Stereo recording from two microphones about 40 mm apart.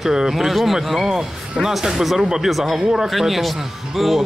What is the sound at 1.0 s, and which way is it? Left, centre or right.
Speech, centre.